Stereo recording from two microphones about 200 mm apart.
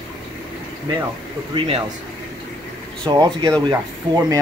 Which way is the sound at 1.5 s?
30° right (ahead or behind).